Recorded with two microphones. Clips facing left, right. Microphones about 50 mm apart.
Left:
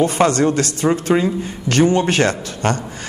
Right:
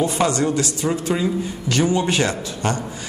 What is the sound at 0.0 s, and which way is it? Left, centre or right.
Speech, left.